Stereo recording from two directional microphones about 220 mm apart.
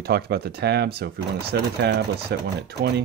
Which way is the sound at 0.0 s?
45° right (ahead or behind).